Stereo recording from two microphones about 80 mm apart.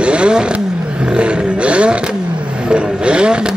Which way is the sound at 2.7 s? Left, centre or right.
Centre.